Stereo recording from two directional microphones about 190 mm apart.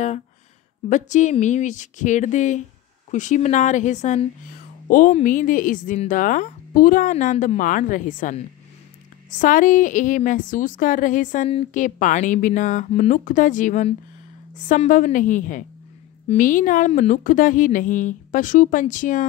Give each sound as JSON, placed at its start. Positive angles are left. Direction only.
{"t": 0.8, "sound": "a woman's voice", "side_deg": 40}
{"t": 9.4, "sound": "a woman's voice", "side_deg": 45}